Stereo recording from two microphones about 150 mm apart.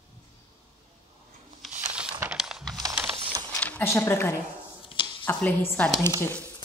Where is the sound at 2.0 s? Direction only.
10° right (ahead or behind).